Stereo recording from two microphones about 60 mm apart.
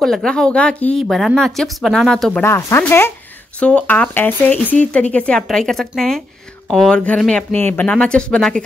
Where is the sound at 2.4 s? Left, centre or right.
Left.